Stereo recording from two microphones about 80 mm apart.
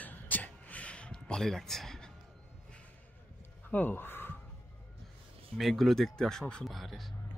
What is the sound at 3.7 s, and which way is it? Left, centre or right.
Speech, left.